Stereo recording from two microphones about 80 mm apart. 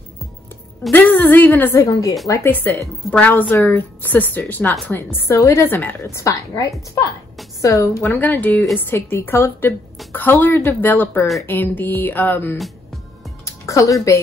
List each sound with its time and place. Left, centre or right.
0.9 s a woman's voice: left
1.9 s speech: left
2.4 s a woman's voice: left
6.0 s a woman's voice: left
13.5 s music: left